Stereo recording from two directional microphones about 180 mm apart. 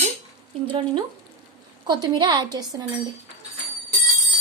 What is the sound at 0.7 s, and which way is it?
A woman's voice, 30° right (ahead or behind).